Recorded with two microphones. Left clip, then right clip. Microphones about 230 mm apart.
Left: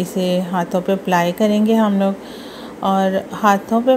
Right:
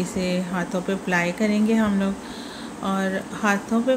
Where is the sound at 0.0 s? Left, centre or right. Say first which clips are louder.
Left 7 dB; centre.